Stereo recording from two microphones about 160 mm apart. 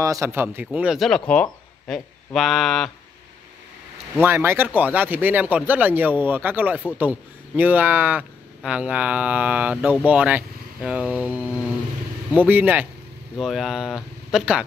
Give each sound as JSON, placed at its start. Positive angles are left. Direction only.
{"t": 0.0, "sound": "speech", "side_deg": -20}
{"t": 0.7, "sound": "speech", "side_deg": -5}
{"t": 4.2, "sound": "speech", "side_deg": -15}